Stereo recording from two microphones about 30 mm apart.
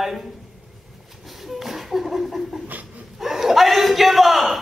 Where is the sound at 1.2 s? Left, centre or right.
Centre.